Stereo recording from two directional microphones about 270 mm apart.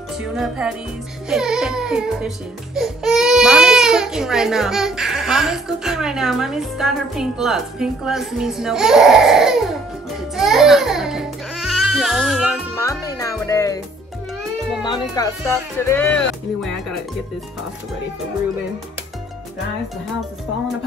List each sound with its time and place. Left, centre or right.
0.2 s speech: centre
10.3 s baby cry: centre
12.7 s music: centre
14.8 s speech: centre